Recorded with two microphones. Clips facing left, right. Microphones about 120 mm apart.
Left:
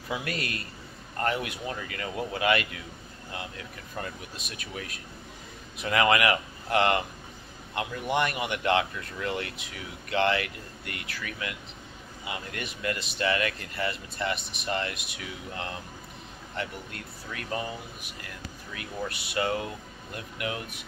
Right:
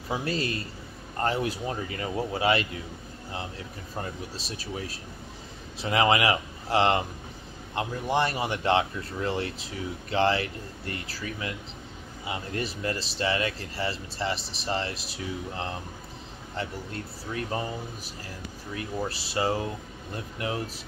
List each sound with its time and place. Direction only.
0.1 s speech: 30° right (ahead or behind)